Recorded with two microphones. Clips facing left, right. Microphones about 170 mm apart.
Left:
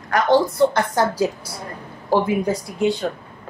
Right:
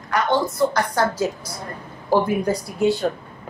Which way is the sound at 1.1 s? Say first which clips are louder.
Left 2 dB; 10° left (ahead or behind).